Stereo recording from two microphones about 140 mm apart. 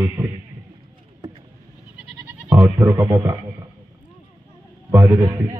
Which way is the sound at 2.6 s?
15° right (ahead or behind).